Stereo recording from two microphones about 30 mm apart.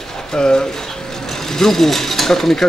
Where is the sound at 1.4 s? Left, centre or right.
Centre.